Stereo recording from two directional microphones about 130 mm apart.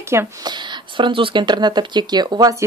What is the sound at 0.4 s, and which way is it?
Speech, 35° right (ahead or behind).